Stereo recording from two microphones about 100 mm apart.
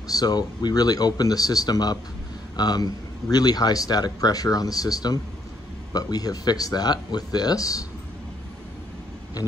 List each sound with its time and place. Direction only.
0.1 s speech: 40° left (ahead or behind)